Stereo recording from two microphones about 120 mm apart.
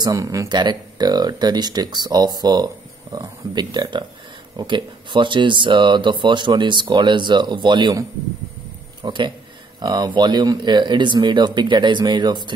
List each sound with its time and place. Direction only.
0.0 s speech: 25° right (ahead or behind)
0.6 s speech: 35° right (ahead or behind)
9.0 s speech: 40° right (ahead or behind)